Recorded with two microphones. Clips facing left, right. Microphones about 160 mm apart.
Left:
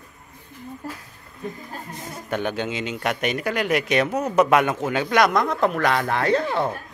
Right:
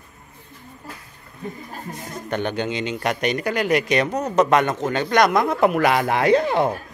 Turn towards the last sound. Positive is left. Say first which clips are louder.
# right 4 dB
turn(degrees=-15)  # may be behind; listen again after turning